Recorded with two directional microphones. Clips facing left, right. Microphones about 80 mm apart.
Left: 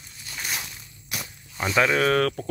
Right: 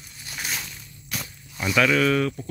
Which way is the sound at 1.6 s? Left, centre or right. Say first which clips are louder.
Right 1 dB; left.